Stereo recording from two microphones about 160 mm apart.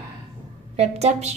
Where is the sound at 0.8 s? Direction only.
45° right (ahead or behind).